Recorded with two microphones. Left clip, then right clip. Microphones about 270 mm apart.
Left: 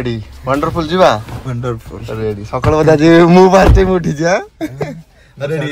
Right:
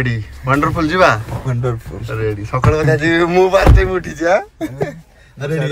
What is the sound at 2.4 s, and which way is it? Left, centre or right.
Speech, centre.